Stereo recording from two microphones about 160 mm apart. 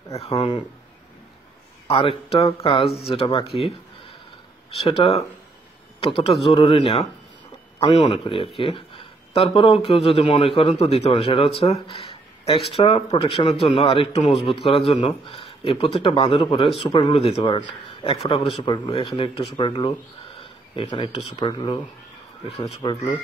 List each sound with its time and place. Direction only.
1.9 s speech: 35° left (ahead or behind)
4.6 s speech: 35° left (ahead or behind)
22.7 s speech: 35° left (ahead or behind)